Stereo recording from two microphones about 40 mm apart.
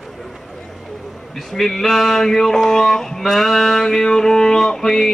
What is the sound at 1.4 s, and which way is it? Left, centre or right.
Speech, centre.